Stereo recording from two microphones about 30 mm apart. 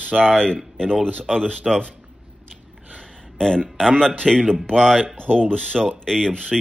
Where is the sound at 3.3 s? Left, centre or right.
Left.